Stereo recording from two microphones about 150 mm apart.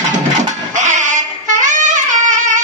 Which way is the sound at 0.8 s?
55° right (ahead or behind).